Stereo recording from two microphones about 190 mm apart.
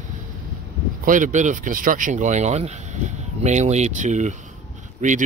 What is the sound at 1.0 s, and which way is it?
Speech, 45° right (ahead or behind).